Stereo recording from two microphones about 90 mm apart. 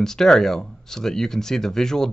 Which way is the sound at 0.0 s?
5° left (ahead or behind).